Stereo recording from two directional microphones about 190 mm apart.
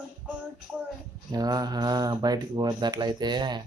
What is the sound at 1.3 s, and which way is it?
Speech, 20° right (ahead or behind).